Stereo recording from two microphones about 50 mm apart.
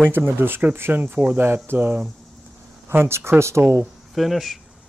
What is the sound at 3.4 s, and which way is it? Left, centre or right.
Speech, right.